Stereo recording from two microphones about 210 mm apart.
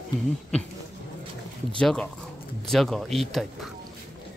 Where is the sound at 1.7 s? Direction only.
5° left (ahead or behind).